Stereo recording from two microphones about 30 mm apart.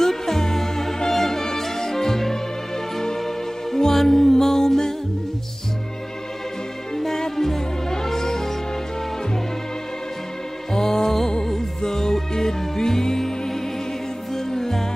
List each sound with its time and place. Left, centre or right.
0.0 s music: centre
3.7 s music: centre
7.3 s music: centre
10.7 s music: left
14.3 s music: centre